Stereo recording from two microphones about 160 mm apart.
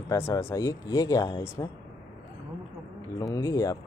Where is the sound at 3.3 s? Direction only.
20° left (ahead or behind).